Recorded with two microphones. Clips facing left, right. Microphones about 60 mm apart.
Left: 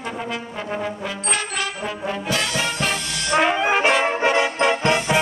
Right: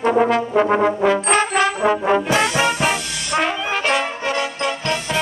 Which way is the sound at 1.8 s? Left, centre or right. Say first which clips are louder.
Right 10 dB; right.